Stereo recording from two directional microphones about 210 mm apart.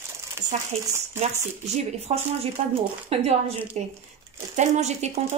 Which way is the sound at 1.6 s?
30° right (ahead or behind).